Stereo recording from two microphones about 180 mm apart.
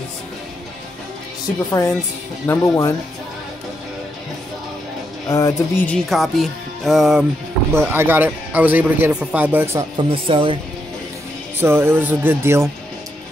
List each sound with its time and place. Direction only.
1.7 s speech: 15° left (ahead or behind)
5.3 s speech: 20° left (ahead or behind)
5.9 s speech: centre (ahead or behind)
7.7 s speech: 15° right (ahead or behind)
9.9 s speech: 30° right (ahead or behind)
11.6 s speech: 15° right (ahead or behind)